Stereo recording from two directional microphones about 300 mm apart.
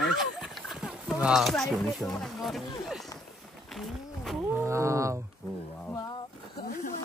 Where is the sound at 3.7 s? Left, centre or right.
Centre.